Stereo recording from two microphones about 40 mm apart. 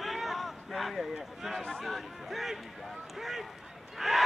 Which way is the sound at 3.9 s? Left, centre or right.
Centre.